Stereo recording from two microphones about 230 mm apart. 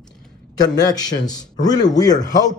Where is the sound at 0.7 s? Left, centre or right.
Centre.